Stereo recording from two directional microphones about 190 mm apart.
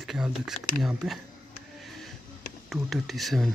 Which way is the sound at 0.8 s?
Centre (ahead or behind).